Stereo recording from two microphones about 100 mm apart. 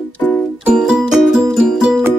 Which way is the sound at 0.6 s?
5° right (ahead or behind).